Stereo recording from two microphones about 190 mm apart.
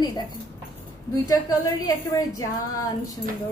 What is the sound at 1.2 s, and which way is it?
A woman's voice, 20° left (ahead or behind).